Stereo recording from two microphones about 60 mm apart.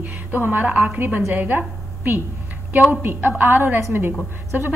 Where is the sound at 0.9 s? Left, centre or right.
Right.